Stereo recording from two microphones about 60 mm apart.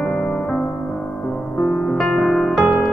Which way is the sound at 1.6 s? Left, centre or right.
Centre.